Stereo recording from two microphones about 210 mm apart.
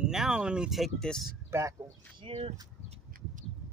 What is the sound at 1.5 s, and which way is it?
Speech, 15° right (ahead or behind).